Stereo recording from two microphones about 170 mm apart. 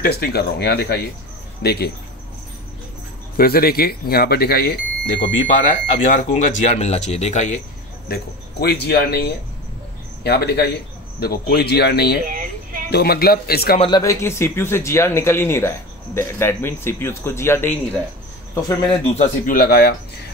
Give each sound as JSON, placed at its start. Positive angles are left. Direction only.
{"t": 0.0, "sound": "speech", "side_deg": 65}
{"t": 3.3, "sound": "speech", "side_deg": 65}
{"t": 8.1, "sound": "speech", "side_deg": 70}
{"t": 10.2, "sound": "speech", "side_deg": 70}
{"t": 12.3, "sound": "a sound", "side_deg": -55}
{"t": 12.9, "sound": "speech", "side_deg": 65}
{"t": 13.7, "sound": "speech", "side_deg": 25}
{"t": 19.0, "sound": "speech", "side_deg": 40}